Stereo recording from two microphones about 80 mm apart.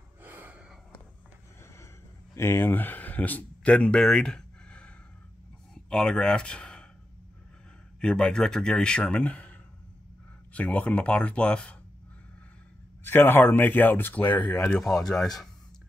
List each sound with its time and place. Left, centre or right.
0.2 s gasp: right
2.3 s speech: left; by 6.9 s centre
8.0 s speech: centre
13.0 s speech: left
14.8 s speech: centre